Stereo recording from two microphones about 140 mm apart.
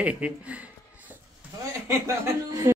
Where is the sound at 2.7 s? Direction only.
20° right (ahead or behind).